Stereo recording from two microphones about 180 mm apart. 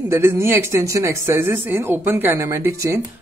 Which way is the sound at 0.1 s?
15° right (ahead or behind).